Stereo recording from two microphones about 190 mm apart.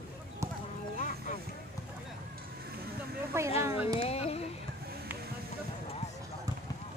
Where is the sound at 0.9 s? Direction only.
40° left (ahead or behind).